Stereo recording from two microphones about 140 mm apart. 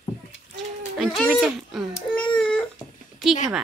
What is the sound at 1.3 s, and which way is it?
Speech, 5° right (ahead or behind).